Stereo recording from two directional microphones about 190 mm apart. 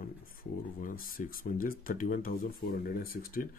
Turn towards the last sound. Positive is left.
turn(degrees=50)  # may be behind; listen again after turning